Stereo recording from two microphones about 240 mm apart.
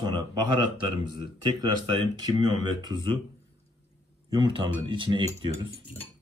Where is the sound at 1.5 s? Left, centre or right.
Centre.